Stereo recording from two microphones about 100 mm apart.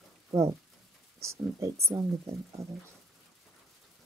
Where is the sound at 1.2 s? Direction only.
30° right (ahead or behind).